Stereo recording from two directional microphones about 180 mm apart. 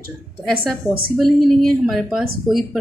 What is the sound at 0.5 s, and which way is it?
Speech, 55° right (ahead or behind).